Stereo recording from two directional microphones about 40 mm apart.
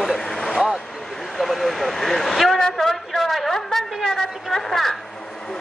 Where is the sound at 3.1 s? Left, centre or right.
Centre.